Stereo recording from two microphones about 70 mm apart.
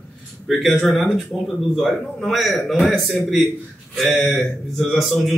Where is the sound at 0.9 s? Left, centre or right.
Centre.